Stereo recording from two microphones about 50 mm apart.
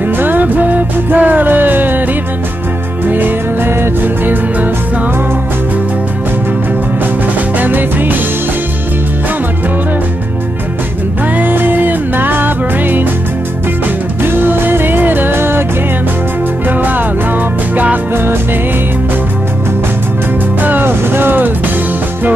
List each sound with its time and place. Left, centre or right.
0.2 s music: right
3.1 s music: right
7.5 s music: right
11.3 s music: right
14.2 s music: right
16.6 s music: right
18.1 s music: right
20.8 s vehicle: right